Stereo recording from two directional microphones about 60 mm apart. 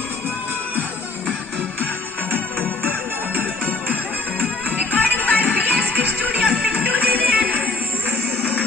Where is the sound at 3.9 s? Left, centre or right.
Right.